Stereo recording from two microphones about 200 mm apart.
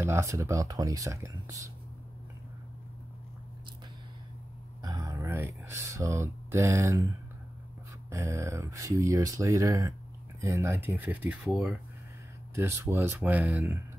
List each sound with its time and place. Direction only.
0.0 s speech: 15° right (ahead or behind)
4.8 s a sound: 15° right (ahead or behind)
8.1 s speech: 15° right (ahead or behind)
12.5 s speech: 15° right (ahead or behind)